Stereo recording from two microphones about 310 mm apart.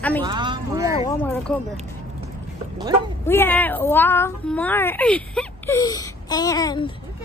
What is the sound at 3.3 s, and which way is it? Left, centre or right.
Speech, centre.